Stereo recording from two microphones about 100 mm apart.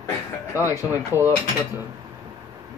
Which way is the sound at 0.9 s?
20° right (ahead or behind).